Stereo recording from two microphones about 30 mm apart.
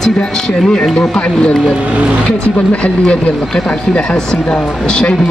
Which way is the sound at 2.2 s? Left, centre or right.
Left.